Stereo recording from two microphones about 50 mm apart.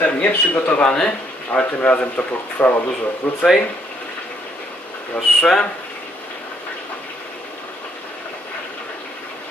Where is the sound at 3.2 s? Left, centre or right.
Left.